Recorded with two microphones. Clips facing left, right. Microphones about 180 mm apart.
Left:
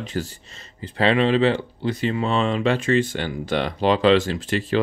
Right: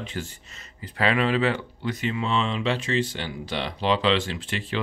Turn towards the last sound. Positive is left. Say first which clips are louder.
# left 8 dB
turn(degrees=40)  # may be behind; listen again after turning